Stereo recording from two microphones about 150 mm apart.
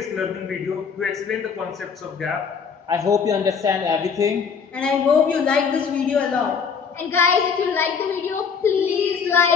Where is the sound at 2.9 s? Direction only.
20° right (ahead or behind).